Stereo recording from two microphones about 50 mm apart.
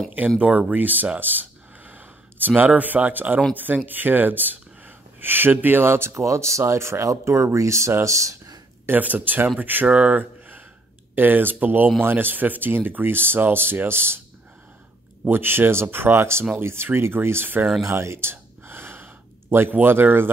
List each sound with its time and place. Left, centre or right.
0.4 s speech: right
0.7 s speech: right
1.2 s a sound: right
3.5 s speech: right
6.6 s speech: right
8.8 s speech: right
9.8 s speech: right
11.1 s speech: right
15.2 s speech: right
17.8 s gasp: right
19.7 s speech: right